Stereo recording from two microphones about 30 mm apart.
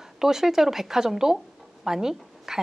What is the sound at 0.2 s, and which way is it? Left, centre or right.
A woman's voice, centre.